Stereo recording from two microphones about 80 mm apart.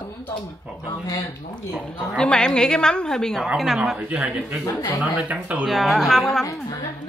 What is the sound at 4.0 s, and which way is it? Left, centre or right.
Speech, centre.